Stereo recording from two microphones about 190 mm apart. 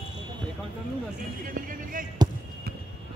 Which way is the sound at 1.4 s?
45° right (ahead or behind).